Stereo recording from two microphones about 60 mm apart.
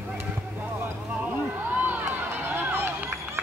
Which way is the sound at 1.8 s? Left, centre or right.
Right.